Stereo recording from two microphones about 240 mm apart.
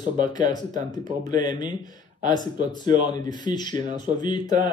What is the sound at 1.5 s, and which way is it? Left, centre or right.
Speech, centre.